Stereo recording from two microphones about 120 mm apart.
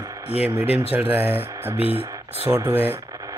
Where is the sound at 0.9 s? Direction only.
15° right (ahead or behind).